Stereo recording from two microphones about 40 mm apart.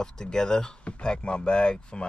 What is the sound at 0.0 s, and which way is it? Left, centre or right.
Speech, centre.